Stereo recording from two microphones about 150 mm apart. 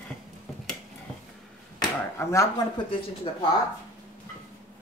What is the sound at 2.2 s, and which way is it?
Speech, 20° left (ahead or behind).